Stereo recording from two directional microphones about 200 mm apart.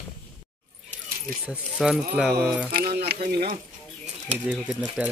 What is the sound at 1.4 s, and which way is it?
Speech, 5° right (ahead or behind).